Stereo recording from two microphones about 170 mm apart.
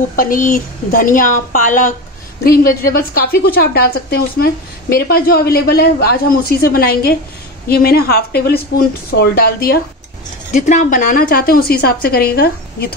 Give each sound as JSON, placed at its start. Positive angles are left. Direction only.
{"t": 0.1, "sound": "a woman's voice", "side_deg": 55}
{"t": 10.5, "sound": "a woman's voice", "side_deg": 45}